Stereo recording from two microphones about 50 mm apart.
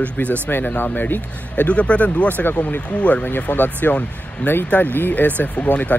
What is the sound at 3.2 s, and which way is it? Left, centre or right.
Speech, left.